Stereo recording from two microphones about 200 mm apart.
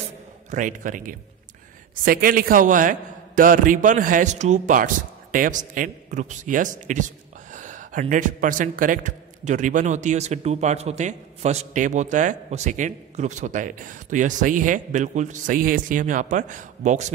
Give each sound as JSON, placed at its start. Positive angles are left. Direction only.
{"t": 0.5, "sound": "a man's voice", "side_deg": -40}